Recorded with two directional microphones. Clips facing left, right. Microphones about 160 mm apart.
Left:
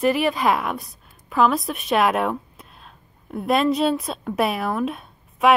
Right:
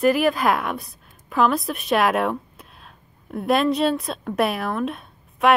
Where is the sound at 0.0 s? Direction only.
Centre (ahead or behind).